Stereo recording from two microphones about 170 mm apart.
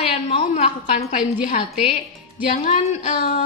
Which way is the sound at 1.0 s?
50° left (ahead or behind).